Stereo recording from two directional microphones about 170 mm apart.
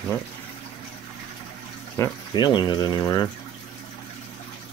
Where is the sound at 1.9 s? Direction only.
20° left (ahead or behind).